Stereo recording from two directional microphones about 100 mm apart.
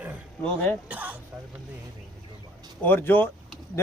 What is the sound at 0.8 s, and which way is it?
Hiccup, 15° right (ahead or behind).